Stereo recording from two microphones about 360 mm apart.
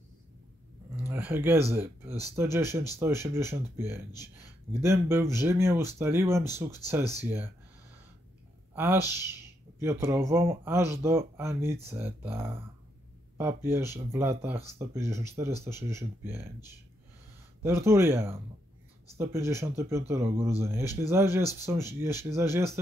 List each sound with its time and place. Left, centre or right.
1.0 s speech: centre
8.7 s speech: centre
17.6 s speech: centre